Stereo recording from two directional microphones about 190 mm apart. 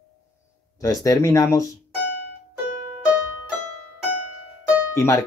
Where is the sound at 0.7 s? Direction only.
20° left (ahead or behind).